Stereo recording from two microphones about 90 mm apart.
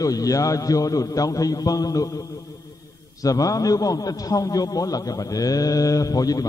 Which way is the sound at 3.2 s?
40° left (ahead or behind).